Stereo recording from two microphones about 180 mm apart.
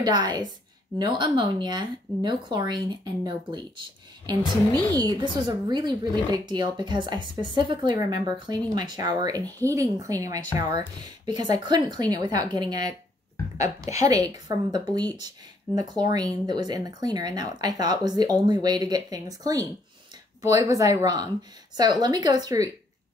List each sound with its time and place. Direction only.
0.0 s speech: 25° right (ahead or behind)
4.9 s speech: 20° right (ahead or behind)